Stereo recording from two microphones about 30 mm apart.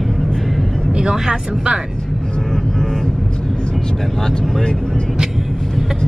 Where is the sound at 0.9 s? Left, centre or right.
Right.